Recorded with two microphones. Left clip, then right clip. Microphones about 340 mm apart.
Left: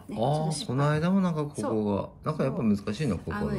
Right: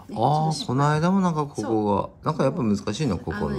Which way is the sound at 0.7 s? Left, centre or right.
Centre.